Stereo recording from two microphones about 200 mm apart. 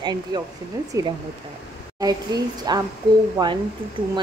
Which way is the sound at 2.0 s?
20° right (ahead or behind).